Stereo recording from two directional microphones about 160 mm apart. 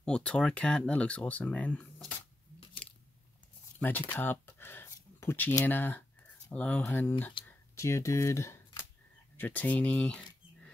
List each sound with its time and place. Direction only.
0.0 s speech: 5° left (ahead or behind)
2.8 s biting: 5° left (ahead or behind)
3.8 s speech: 10° left (ahead or behind)